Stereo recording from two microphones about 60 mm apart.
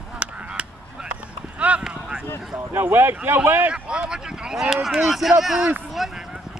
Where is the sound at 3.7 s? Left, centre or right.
Centre.